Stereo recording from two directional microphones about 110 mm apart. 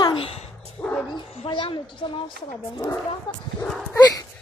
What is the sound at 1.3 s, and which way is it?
A woman's voice, 60° left (ahead or behind).